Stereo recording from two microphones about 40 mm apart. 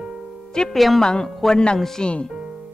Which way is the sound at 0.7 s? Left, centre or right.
Centre.